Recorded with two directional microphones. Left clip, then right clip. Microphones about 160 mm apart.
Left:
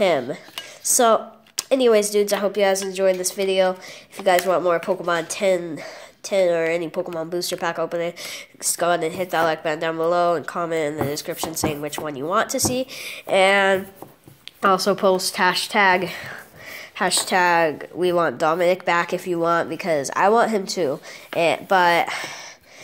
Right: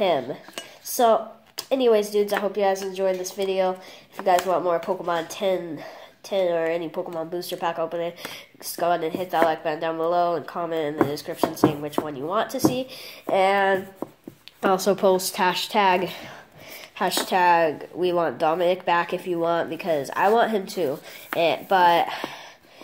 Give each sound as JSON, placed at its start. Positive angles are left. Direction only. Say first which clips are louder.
{"t": 0.0, "sound": "speech", "louder": "left 3 dB", "side_deg": 45}
{"t": 14.6, "sound": "a woman's voice", "louder": "left 2 dB", "side_deg": 10}